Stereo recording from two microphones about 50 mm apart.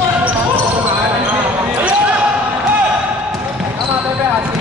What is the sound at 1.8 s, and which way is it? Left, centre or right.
Basketball bounce, right.